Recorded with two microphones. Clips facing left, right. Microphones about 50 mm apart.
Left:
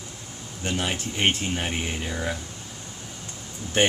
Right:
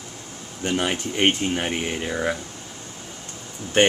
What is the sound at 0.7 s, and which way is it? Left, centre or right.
Speech, centre.